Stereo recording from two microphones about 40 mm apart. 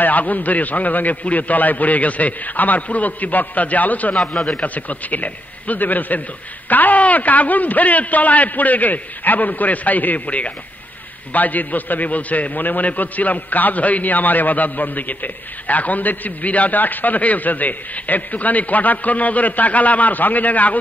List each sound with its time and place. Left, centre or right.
0.0 s a man's voice: left